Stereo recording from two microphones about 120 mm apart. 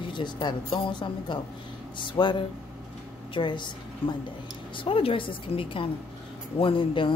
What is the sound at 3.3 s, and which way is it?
Speech, 40° left (ahead or behind).